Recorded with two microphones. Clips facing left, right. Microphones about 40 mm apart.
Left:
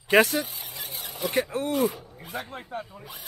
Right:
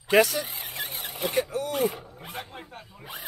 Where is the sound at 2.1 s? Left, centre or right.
Centre.